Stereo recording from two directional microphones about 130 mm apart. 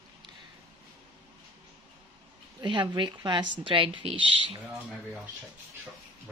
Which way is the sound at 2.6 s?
35° right (ahead or behind).